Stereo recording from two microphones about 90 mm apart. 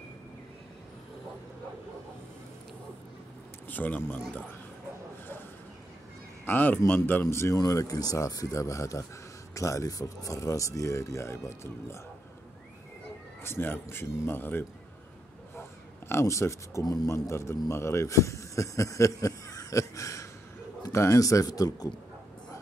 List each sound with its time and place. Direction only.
3.6 s speech: 20° left (ahead or behind)
6.4 s a man's voice: 20° left (ahead or behind)
7.5 s a man's voice: 45° left (ahead or behind)
13.4 s a man's voice: 25° left (ahead or behind)
16.1 s a man's voice: 30° left (ahead or behind); by 21.9 s 45° left (ahead or behind)